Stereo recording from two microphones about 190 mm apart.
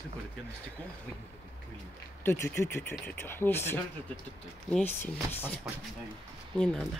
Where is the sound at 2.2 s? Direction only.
10° left (ahead or behind).